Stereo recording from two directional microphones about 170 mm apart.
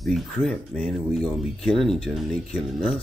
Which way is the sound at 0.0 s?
Centre (ahead or behind).